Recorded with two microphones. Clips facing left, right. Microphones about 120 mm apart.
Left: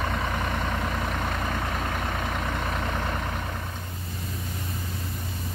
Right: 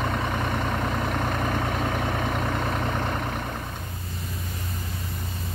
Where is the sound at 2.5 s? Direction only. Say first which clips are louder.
Right 3 dB; 15° right (ahead or behind).